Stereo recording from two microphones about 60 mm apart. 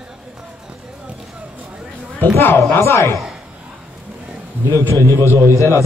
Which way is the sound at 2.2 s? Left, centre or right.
Left.